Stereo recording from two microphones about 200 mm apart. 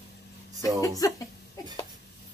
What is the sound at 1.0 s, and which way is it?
Speech, 15° left (ahead or behind).